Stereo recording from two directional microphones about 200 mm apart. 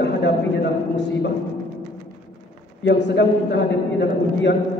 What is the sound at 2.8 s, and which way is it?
A man's voice, 60° left (ahead or behind).